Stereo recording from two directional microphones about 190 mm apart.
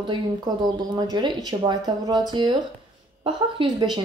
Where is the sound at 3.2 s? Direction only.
25° right (ahead or behind).